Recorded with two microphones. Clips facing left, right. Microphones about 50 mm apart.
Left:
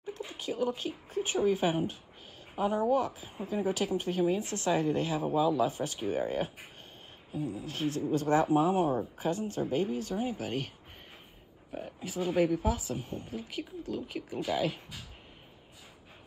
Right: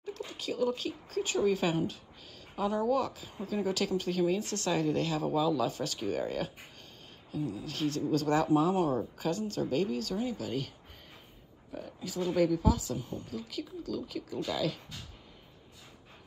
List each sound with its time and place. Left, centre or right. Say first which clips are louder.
0.0 s a woman's voice: even; centre
11.7 s a woman's voice: left 1 dB; left